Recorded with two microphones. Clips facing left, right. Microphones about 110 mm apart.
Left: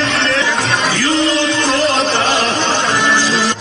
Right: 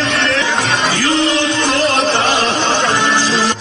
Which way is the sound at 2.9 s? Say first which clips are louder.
Even; 20° right (ahead or behind).